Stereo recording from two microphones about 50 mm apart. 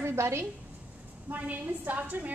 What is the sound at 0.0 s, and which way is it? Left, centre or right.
Speech, right.